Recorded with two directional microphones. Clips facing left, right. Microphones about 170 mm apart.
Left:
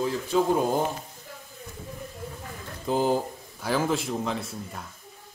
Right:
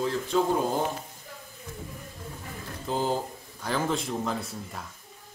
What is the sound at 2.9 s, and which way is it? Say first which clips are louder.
A man's voice: left 4 dB; 15° left (ahead or behind).